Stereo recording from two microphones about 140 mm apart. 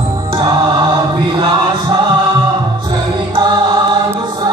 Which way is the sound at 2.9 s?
30° right (ahead or behind).